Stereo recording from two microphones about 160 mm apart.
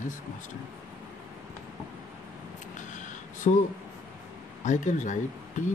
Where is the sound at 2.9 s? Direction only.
50° left (ahead or behind).